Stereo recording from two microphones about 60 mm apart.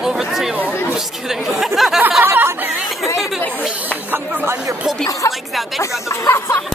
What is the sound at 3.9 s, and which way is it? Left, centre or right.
Snake, right.